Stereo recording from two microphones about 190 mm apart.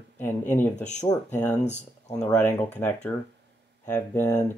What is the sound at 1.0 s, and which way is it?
Speech, 25° left (ahead or behind).